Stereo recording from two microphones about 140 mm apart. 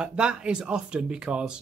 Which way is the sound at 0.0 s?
5° right (ahead or behind).